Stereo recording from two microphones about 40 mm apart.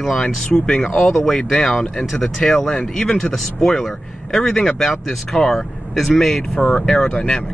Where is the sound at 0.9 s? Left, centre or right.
Centre.